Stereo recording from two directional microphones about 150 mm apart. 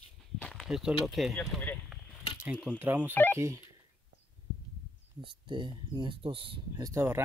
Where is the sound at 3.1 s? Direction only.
10° left (ahead or behind).